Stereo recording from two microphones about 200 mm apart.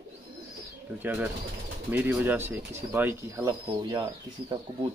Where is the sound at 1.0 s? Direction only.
5° right (ahead or behind).